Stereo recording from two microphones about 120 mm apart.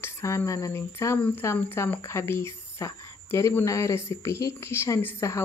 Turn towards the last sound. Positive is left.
turn(degrees=25)  # may be behind; listen again after turning